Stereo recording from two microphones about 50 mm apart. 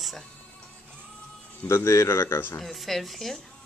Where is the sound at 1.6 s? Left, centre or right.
Left.